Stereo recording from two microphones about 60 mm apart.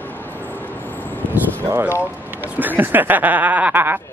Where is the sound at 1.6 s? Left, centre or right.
Right.